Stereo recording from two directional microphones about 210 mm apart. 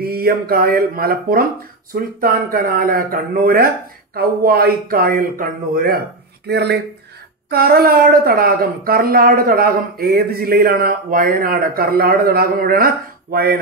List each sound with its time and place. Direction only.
0.0 s speech: 45° right (ahead or behind)